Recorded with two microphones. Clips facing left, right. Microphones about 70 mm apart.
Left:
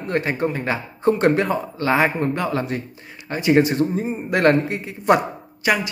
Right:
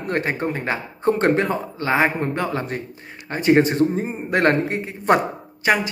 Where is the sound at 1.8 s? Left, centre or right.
Right.